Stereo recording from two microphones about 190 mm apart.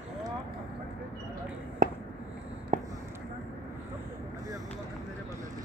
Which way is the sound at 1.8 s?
50° right (ahead or behind).